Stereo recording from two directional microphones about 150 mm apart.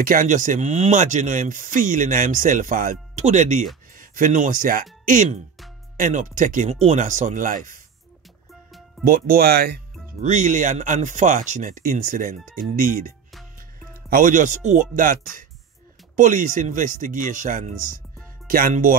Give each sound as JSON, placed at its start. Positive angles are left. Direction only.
{"t": 0.0, "sound": "speech", "side_deg": -65}
{"t": 9.0, "sound": "speech", "side_deg": -70}
{"t": 10.2, "sound": "speech", "side_deg": -55}
{"t": 16.2, "sound": "speech", "side_deg": -60}